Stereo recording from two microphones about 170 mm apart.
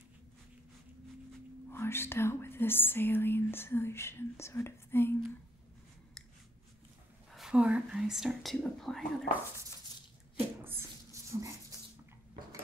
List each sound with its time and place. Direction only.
1.7 s speech: 15° left (ahead or behind)
7.3 s speech: 5° right (ahead or behind)
10.6 s a sound: 15° right (ahead or behind)